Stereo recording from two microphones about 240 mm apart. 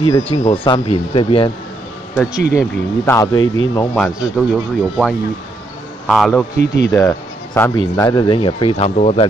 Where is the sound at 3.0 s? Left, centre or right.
Centre.